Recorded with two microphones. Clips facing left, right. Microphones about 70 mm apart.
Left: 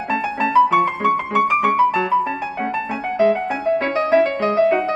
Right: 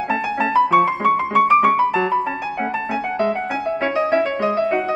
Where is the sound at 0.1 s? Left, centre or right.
Centre.